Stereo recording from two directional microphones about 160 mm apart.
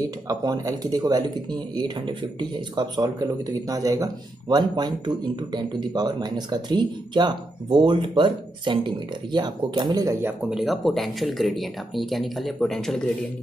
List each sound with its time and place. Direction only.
0.0 s speech: 20° right (ahead or behind)
10.2 s speech: 5° right (ahead or behind)